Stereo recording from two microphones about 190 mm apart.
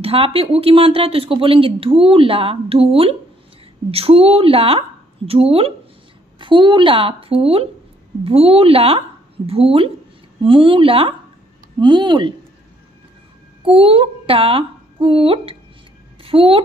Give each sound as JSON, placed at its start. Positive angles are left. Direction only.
{"t": 0.0, "sound": "speech", "side_deg": -30}
{"t": 13.6, "sound": "speech", "side_deg": -30}